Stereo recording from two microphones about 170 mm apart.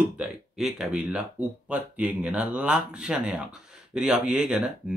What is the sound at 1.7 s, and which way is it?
Speech, 10° right (ahead or behind).